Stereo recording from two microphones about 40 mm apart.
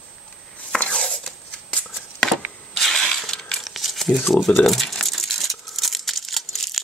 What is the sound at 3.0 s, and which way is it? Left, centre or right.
Crushing, centre.